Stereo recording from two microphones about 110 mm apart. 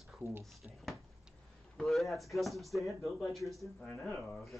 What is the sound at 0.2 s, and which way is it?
Speech, 25° right (ahead or behind).